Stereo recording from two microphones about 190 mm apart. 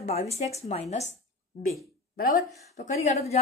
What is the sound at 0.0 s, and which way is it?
A woman's voice, 35° left (ahead or behind).